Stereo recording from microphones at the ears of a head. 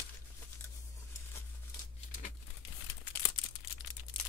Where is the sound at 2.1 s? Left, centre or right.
Left.